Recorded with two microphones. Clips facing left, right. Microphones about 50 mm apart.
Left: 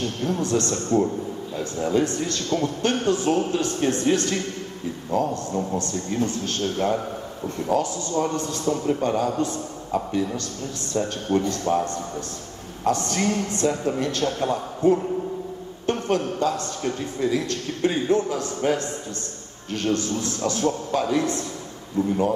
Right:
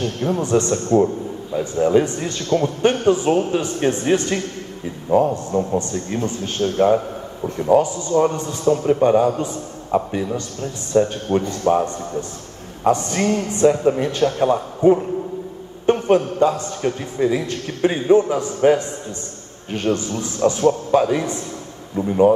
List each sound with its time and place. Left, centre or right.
0.2 s a man's voice: right
10.9 s speech: right
11.7 s a man's voice: right